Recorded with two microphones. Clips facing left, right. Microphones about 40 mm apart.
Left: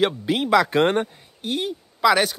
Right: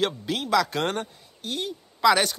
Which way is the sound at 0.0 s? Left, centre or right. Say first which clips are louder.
Left 5 dB; left.